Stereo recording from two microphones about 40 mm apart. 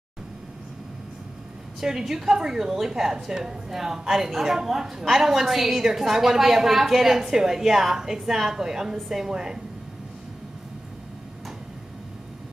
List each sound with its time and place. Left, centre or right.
1.8 s a woman's voice: centre